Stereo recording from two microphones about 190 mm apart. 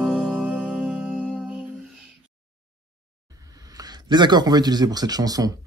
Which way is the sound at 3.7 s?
20° right (ahead or behind).